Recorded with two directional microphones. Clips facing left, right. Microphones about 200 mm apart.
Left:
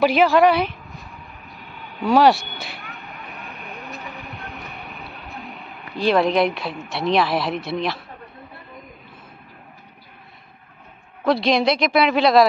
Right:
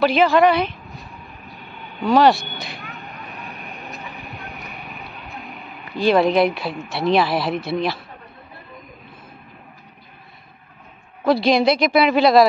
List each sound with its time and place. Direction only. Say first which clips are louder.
0.0 s a woman's voice: even; 10° left (ahead or behind)
0.9 s vehicle: right 1 dB; centre (ahead or behind)
2.0 s a woman's voice: even; 5° left (ahead or behind)
2.6 s vehicle: right 2 dB; centre (ahead or behind)
3.2 s vehicle: right 2 dB; 15° right (ahead or behind)
3.6 s vehicle: even; centre (ahead or behind)
5.3 s speech: even; centre (ahead or behind)
11.2 s a man's voice: right 2 dB; centre (ahead or behind)